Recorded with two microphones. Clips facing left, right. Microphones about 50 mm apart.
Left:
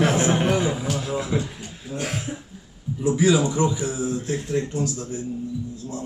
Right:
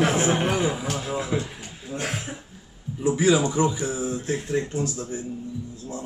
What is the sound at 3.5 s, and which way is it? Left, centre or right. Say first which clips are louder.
Speech: even; centre.